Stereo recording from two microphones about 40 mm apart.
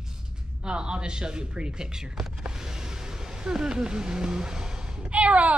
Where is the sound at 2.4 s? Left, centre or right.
Centre.